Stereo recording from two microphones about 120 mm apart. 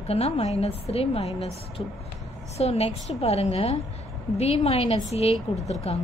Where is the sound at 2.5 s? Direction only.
60° left (ahead or behind).